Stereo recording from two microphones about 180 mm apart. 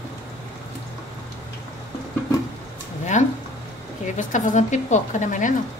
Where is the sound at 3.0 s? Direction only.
40° left (ahead or behind).